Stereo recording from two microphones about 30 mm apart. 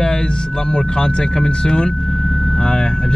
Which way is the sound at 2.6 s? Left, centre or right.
Left.